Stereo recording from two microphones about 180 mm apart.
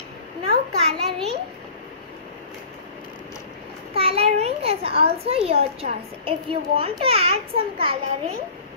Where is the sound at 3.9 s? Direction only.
35° right (ahead or behind).